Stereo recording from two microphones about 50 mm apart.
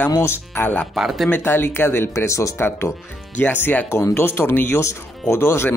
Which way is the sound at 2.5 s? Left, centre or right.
Left.